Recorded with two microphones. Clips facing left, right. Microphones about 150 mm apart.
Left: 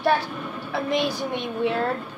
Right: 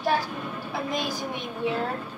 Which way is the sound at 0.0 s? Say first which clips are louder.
Left 3 dB; 65° left (ahead or behind).